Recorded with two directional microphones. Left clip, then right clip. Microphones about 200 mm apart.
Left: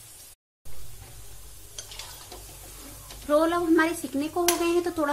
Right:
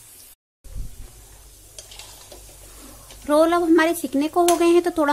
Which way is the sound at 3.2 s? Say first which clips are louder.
Right 6 dB; 40° right (ahead or behind).